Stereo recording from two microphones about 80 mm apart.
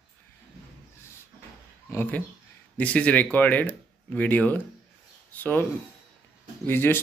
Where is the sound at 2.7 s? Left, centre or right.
Centre.